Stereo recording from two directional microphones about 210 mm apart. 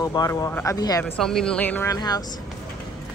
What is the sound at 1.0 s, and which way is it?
Speech, centre (ahead or behind).